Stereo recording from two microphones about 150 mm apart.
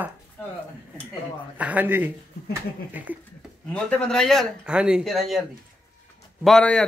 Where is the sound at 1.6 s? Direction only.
10° right (ahead or behind).